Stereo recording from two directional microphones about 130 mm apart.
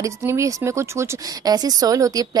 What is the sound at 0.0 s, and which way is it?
A woman's voice, 20° right (ahead or behind).